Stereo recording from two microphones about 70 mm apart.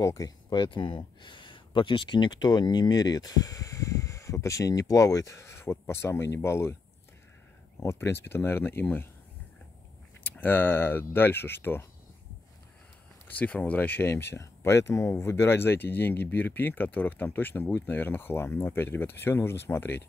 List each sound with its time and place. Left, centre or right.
0.0 s speech: left
0.5 s speech: left
2.0 s speech: left
7.8 s speech: left
10.2 s speech: left
13.3 s speech: left